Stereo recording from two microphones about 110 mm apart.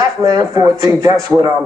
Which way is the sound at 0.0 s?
40° right (ahead or behind).